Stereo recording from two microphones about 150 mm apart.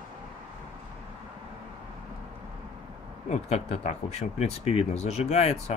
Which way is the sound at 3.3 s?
45° left (ahead or behind).